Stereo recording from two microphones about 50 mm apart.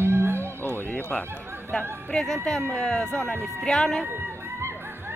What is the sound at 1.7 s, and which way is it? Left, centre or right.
Speech, centre.